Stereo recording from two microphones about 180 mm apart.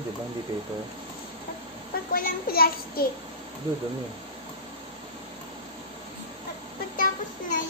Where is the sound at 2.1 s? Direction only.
55° left (ahead or behind).